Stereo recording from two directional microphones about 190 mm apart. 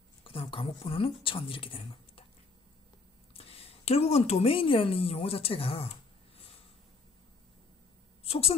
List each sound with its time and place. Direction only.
0.2 s speech: 30° left (ahead or behind)
3.3 s speech: 30° left (ahead or behind)
8.2 s a woman's voice: 30° left (ahead or behind)